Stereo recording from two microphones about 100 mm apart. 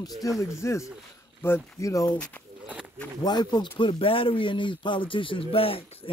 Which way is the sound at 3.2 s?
45° left (ahead or behind).